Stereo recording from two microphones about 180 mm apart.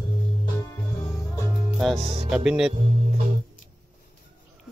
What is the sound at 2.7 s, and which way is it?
Music, 40° right (ahead or behind).